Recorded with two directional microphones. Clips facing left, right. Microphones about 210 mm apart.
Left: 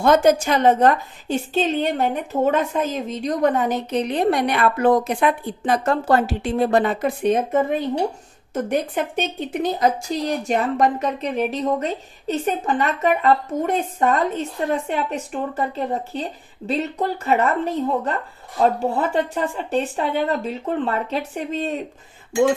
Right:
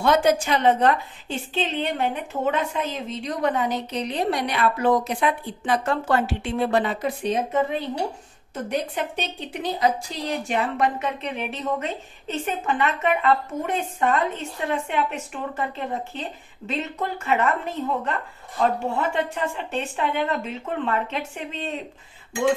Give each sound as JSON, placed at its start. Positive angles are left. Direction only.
{"t": 0.0, "sound": "a woman's voice", "side_deg": 45}
{"t": 5.6, "sound": "a woman's voice", "side_deg": 40}
{"t": 8.6, "sound": "a woman's voice", "side_deg": 50}